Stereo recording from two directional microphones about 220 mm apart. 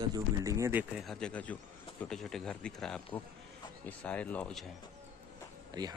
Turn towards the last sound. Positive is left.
turn(degrees=-20)  # may be behind; listen again after turning